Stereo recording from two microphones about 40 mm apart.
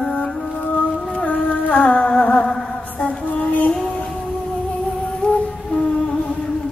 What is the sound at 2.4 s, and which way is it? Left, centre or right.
Music, centre.